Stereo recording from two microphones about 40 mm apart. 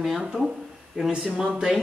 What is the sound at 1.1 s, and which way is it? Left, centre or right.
Speech, right.